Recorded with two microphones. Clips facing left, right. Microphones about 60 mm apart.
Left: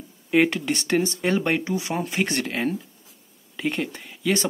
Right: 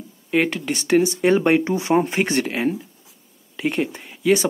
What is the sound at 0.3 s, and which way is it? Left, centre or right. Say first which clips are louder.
Speech: even; centre.